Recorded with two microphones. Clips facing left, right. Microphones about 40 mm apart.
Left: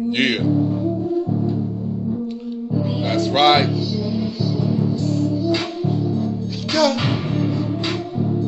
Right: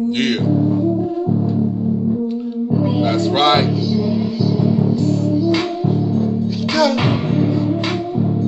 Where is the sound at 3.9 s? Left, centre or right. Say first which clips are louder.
Right 5 dB; right.